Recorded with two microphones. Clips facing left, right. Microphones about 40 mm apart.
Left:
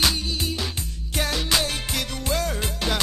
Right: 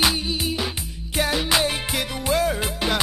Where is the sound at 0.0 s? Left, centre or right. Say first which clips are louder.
Right 2 dB; centre.